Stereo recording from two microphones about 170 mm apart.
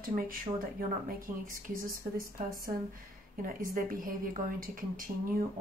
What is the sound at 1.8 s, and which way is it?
Speech, 55° right (ahead or behind).